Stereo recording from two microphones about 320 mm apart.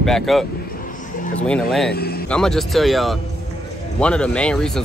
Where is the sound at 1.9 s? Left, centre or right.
Left.